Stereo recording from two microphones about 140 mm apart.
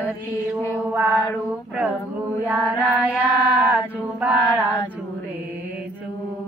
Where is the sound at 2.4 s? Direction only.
10° right (ahead or behind).